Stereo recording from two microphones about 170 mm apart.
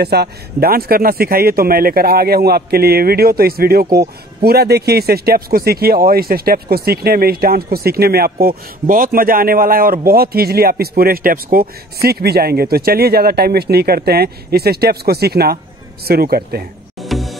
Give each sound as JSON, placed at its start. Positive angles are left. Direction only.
{"t": 0.0, "sound": "speech", "side_deg": -70}
{"t": 17.0, "sound": "music", "side_deg": 0}